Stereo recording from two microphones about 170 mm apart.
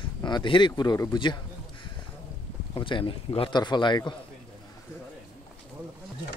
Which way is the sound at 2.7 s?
30° left (ahead or behind).